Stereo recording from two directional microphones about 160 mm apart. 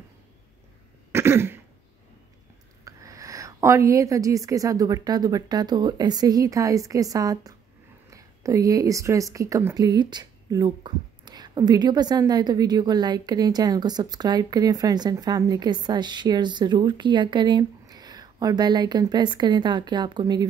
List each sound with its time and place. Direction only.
1.1 s cough: 15° right (ahead or behind)
2.8 s speech: 20° right (ahead or behind)